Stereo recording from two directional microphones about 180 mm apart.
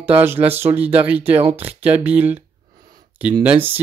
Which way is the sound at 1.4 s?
30° right (ahead or behind).